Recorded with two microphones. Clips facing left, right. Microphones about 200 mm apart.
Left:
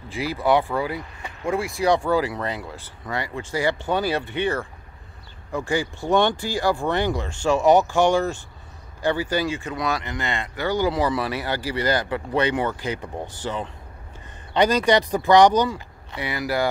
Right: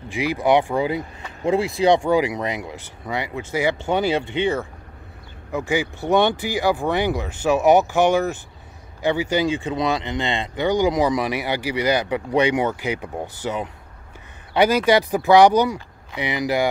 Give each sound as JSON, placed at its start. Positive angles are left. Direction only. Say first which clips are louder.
{"t": 0.1, "sound": "speech", "louder": "right 2 dB", "side_deg": -15}
{"t": 5.6, "sound": "speech", "louder": "right 2 dB", "side_deg": -20}